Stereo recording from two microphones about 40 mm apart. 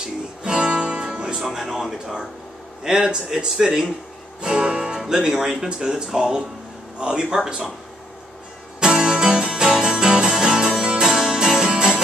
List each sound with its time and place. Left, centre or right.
0.0 s guitar: centre
1.4 s music: centre
2.8 s a man's voice: centre
8.7 s music: centre